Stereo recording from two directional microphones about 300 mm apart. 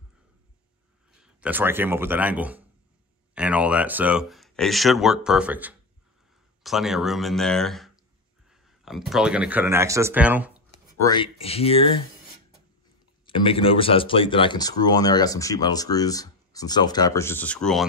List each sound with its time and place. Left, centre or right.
1.2 s speech: centre
11.0 s speech: centre
13.2 s speech: centre